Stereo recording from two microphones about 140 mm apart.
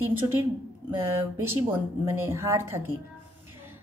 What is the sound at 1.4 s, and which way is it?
A woman's voice, 15° right (ahead or behind).